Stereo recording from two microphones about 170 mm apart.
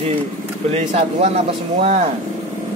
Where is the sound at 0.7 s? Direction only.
40° right (ahead or behind).